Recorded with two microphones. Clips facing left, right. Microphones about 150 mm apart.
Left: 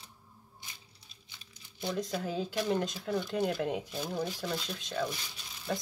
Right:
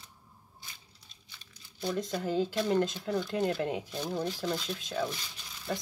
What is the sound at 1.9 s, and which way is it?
Speech, centre (ahead or behind).